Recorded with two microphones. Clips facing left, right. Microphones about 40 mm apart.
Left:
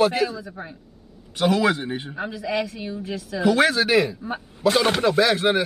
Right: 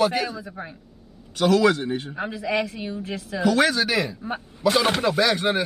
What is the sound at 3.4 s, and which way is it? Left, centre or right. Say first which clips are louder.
Speech: left 1 dB; centre.